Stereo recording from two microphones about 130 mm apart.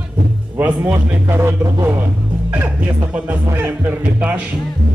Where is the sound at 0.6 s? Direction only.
15° right (ahead or behind).